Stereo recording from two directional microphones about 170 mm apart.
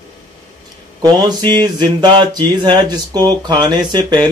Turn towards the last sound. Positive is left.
turn(degrees=-25)  # may be behind; listen again after turning